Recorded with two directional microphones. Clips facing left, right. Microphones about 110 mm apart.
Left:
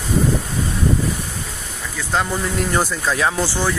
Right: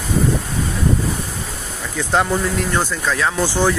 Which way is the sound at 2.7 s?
15° left (ahead or behind).